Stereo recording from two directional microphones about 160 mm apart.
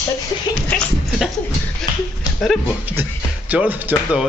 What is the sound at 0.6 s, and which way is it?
Speech, 5° left (ahead or behind).